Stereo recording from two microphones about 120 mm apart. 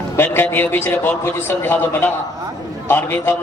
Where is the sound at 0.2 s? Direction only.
20° left (ahead or behind).